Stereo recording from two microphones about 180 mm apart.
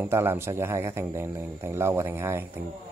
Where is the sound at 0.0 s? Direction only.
10° right (ahead or behind).